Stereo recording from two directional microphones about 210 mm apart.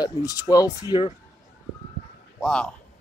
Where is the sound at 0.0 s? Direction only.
15° left (ahead or behind).